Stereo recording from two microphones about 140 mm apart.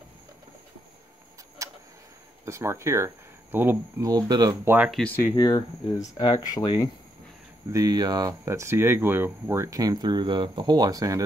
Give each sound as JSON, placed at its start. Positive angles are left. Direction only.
{"t": 1.6, "sound": "tick-tock", "side_deg": -25}
{"t": 2.4, "sound": "speech", "side_deg": -20}
{"t": 4.1, "sound": "speech", "side_deg": -30}
{"t": 4.6, "sound": "speech", "side_deg": -10}
{"t": 4.9, "sound": "speech", "side_deg": 10}
{"t": 5.2, "sound": "speech", "side_deg": 30}
{"t": 7.7, "sound": "speech", "side_deg": -25}